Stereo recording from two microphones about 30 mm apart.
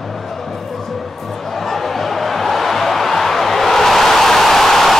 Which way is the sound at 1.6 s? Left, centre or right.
Centre.